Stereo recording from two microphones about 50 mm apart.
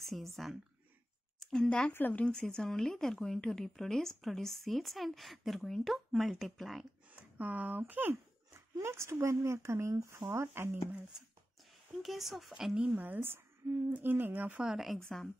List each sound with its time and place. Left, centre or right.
0.0 s speech: centre
1.4 s speech: centre
1.9 s a woman's voice: left
2.2 s speech: centre
7.3 s speech: right
8.5 s speech: right
12.0 s speech: centre
12.7 s speech: right
13.2 s speech: right
15.0 s a woman's voice: centre